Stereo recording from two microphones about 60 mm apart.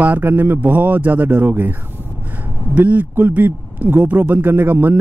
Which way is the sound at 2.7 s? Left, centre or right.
Right.